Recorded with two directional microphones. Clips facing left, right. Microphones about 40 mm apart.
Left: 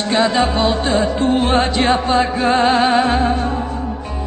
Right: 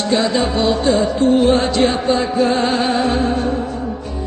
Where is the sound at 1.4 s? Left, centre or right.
Left.